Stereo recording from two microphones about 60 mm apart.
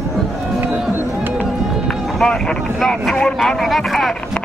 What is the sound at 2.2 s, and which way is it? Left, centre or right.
Speech, centre.